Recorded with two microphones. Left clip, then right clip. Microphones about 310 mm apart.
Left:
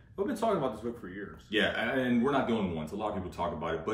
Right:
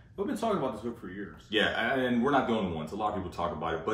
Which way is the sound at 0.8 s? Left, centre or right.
Centre.